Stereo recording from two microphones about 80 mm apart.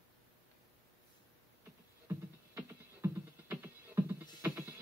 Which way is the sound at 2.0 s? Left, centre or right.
Right.